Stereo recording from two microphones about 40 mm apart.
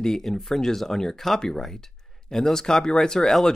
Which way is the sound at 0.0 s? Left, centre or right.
Centre.